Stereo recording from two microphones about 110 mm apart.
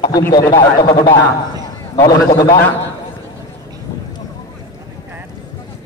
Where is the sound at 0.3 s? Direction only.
40° left (ahead or behind).